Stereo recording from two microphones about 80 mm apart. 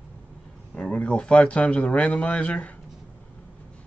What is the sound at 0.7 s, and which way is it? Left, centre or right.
Speech, centre.